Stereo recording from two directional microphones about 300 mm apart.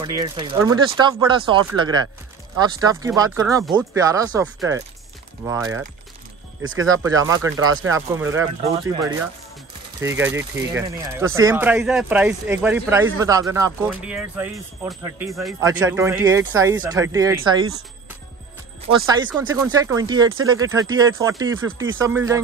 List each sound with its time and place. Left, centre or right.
0.0 s speech: centre
18.9 s speech: centre